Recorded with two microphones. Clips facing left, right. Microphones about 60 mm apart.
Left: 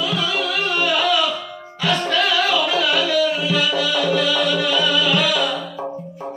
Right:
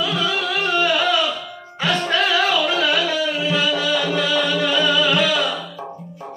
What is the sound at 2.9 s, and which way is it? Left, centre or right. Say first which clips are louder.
Music: left 2 dB; right.